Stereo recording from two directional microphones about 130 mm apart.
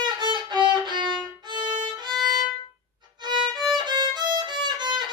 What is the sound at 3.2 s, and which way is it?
Violin, 35° right (ahead or behind).